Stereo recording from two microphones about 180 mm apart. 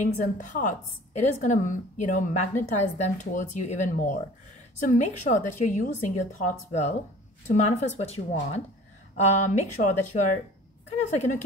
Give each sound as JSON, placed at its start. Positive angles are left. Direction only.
{"t": 0.0, "sound": "a woman's voice", "side_deg": 45}